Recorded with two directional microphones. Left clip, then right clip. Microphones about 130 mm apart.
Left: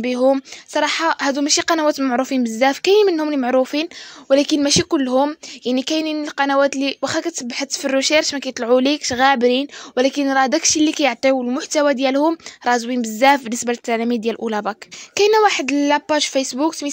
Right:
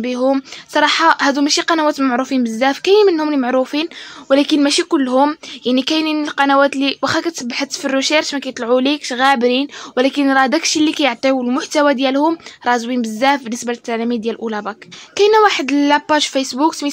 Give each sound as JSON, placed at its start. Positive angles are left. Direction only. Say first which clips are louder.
{"t": 0.0, "sound": "speech", "louder": "even", "side_deg": 45}
{"t": 0.3, "sound": "speech", "louder": "right 1 dB", "side_deg": 30}